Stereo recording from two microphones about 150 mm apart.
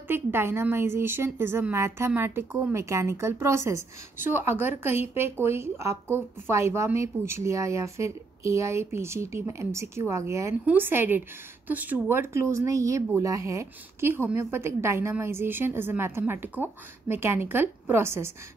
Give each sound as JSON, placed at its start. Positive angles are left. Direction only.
{"t": 0.1, "sound": "a woman's voice", "side_deg": -15}